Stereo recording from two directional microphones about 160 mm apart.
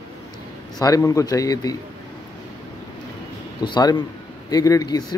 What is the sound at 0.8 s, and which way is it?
Speech, 20° left (ahead or behind).